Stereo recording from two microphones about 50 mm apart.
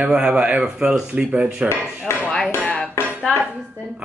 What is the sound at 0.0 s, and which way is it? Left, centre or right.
Speech, centre.